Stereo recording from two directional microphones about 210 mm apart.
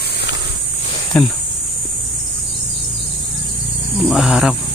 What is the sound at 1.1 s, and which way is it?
Speech, 5° left (ahead or behind).